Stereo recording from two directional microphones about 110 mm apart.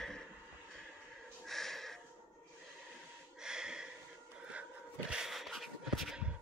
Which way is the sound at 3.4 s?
5° right (ahead or behind).